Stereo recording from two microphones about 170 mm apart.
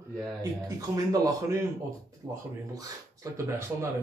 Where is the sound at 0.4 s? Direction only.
20° right (ahead or behind).